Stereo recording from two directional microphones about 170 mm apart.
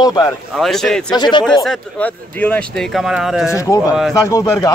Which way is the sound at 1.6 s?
5° left (ahead or behind).